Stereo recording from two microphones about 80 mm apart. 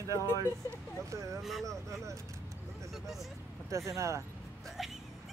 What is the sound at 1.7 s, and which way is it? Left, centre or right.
Speech, right.